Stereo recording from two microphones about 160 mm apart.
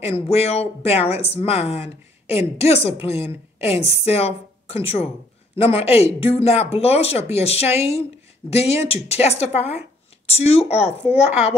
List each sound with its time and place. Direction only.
0.0 s speech: 40° left (ahead or behind)
3.1 s a woman's voice: 15° right (ahead or behind)
4.0 s speech: 40° left (ahead or behind)